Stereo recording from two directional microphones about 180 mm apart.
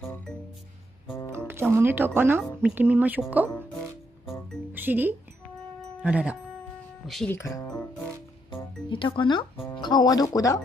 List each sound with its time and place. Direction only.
1.5 s speech: 10° right (ahead or behind)
4.7 s speech: 10° right (ahead or behind)
5.8 s music: 5° right (ahead or behind)
7.2 s speech: 15° left (ahead or behind)